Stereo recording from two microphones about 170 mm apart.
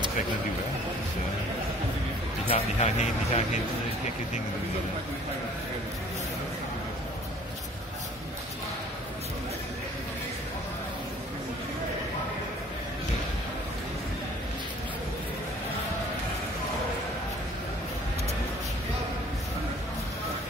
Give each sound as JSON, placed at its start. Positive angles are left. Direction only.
{"t": 2.5, "sound": "speech", "side_deg": 40}